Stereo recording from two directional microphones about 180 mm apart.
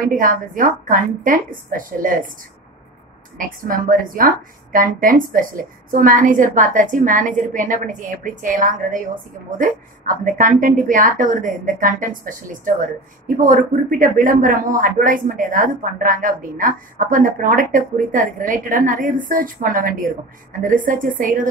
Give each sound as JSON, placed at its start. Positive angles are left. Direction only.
{"t": 0.0, "sound": "speech", "side_deg": -50}
{"t": 3.3, "sound": "speech", "side_deg": -50}